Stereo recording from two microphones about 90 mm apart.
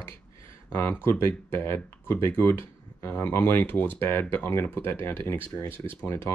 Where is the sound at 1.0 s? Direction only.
30° left (ahead or behind).